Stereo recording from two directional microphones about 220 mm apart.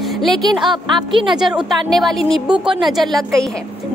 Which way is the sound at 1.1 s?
20° right (ahead or behind).